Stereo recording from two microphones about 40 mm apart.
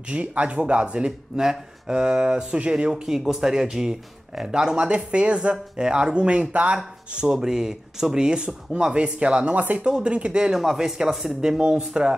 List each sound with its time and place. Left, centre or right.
0.1 s speech: right
1.4 s speech: centre
2.0 s speech: right
2.9 s speech: centre
4.7 s speech: right
7.3 s speech: centre; by 9.8 s right
9.8 s speech: right
10.5 s speech: centre